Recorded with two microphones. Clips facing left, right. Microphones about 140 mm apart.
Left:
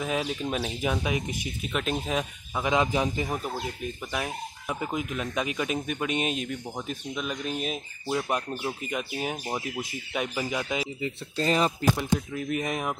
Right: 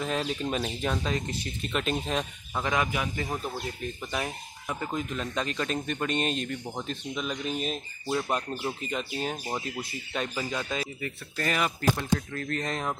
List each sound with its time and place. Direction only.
0.0 s a man's voice: 5° left (ahead or behind)
2.6 s speech: 20° left (ahead or behind)
3.8 s a man's voice: centre (ahead or behind); by 11.7 s 25° left (ahead or behind)
12.0 s a man's voice: 10° left (ahead or behind)